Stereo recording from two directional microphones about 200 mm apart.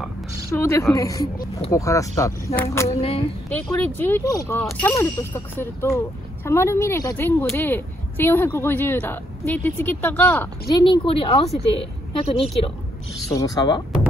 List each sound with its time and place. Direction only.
0.6 s speech: 15° left (ahead or behind)
3.0 s speech: 30° left (ahead or behind)
3.4 s speech: 10° left (ahead or behind)
10.7 s a woman's voice: 25° left (ahead or behind)
13.3 s speech: 15° left (ahead or behind)